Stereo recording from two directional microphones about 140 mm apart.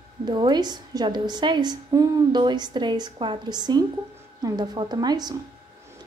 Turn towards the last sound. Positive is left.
turn(degrees=-30)  # may be behind; listen again after turning